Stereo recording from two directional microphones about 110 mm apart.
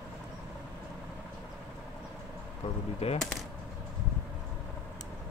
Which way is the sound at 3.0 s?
65° left (ahead or behind).